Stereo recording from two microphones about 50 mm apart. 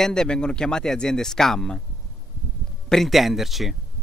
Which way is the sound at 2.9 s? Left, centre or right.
Centre.